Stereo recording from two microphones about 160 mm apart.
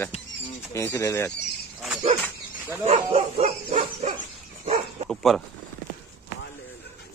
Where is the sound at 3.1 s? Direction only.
40° right (ahead or behind).